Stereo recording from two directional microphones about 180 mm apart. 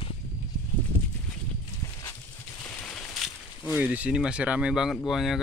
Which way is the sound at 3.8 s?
10° right (ahead or behind).